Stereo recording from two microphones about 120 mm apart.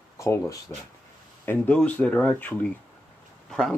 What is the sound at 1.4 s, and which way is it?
Speech, 15° left (ahead or behind).